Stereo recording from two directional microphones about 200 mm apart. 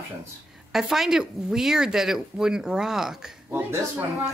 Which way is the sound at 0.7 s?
Centre (ahead or behind).